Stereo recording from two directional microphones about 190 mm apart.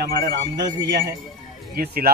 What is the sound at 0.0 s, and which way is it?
Speech, 55° right (ahead or behind).